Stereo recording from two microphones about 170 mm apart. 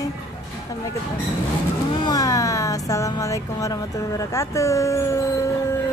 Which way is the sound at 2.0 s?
20° left (ahead or behind).